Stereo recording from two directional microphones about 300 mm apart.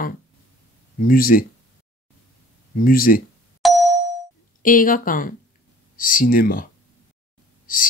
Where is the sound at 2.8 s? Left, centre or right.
Left.